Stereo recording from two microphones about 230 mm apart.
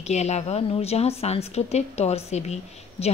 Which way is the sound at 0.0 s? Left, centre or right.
Left.